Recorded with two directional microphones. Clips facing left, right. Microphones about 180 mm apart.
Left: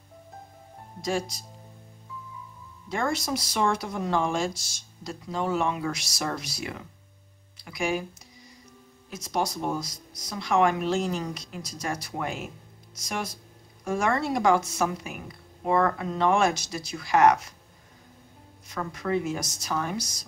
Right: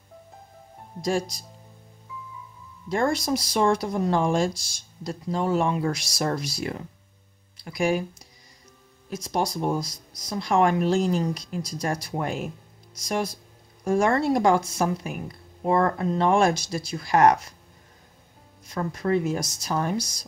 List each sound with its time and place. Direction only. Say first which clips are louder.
2.9 s speech: right 4 dB; 35° right (ahead or behind)
7.6 s speech: right 4 dB; 40° right (ahead or behind)
9.1 s speech: right 2 dB; 35° right (ahead or behind)
18.7 s speech: right 4 dB; 35° right (ahead or behind)